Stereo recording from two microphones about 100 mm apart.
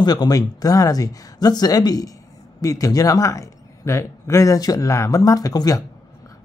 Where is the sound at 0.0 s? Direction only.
45° left (ahead or behind).